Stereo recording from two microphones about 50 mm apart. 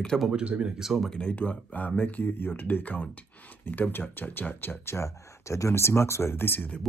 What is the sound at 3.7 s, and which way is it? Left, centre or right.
Speech, left.